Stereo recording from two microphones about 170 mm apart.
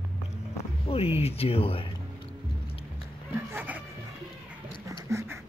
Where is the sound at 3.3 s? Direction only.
10° right (ahead or behind).